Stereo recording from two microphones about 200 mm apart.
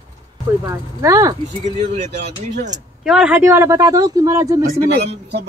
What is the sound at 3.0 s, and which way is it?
Speech, 5° right (ahead or behind).